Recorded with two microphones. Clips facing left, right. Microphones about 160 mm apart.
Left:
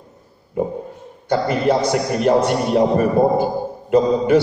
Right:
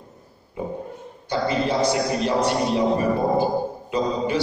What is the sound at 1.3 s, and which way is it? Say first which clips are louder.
A man's voice: left 5 dB; 55° left (ahead or behind).